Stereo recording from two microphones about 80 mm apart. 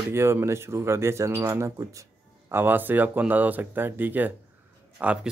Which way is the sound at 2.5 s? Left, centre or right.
Right.